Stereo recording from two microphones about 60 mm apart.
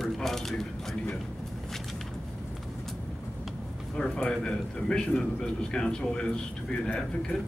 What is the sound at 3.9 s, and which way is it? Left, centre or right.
A man's voice, centre.